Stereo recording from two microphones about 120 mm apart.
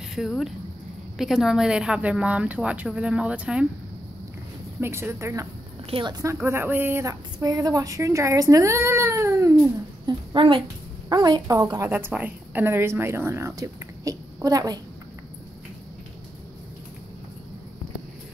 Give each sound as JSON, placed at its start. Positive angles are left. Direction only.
{"t": 0.1, "sound": "a woman's voice", "side_deg": 0}
{"t": 4.7, "sound": "speech", "side_deg": -20}
{"t": 5.9, "sound": "a woman's voice", "side_deg": -45}
{"t": 6.1, "sound": "speech", "side_deg": -25}
{"t": 10.0, "sound": "a woman's voice", "side_deg": -45}
{"t": 11.9, "sound": "speech", "side_deg": -15}